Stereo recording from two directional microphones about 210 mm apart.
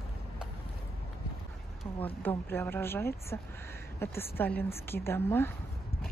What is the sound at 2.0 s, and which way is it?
Speech, 10° left (ahead or behind).